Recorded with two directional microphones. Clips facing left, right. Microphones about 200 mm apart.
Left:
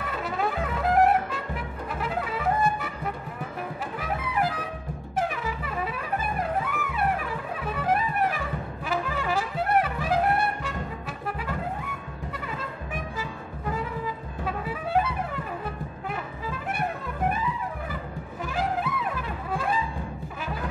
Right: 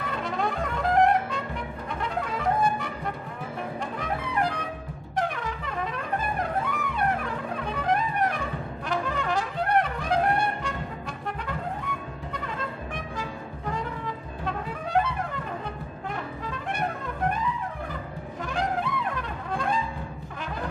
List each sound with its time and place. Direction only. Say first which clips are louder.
0.1 s brass instrument: left 1 dB; 5° left (ahead or behind)
2.0 s music: even; 5° left (ahead or behind)
4.0 s trumpet: left 1 dB; 5° left (ahead or behind)
13.7 s trumpet: left 1 dB; 5° left (ahead or behind)
16.1 s music: even; 5° left (ahead or behind)
18.4 s brass instrument: even; 5° left (ahead or behind)